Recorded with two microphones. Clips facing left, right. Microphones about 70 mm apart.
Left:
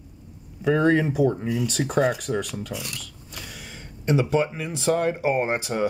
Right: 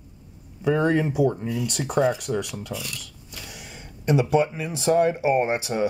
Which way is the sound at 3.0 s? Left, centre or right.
Centre.